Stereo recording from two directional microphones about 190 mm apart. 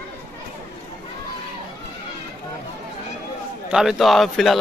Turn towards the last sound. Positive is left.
turn(degrees=0)  # may be behind; listen again after turning